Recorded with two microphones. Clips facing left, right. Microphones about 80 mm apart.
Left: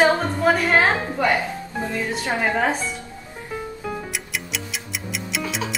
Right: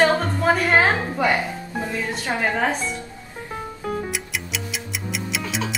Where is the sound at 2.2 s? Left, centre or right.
Centre.